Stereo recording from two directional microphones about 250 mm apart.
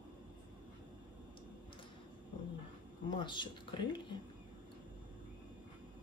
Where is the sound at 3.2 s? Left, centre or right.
Centre.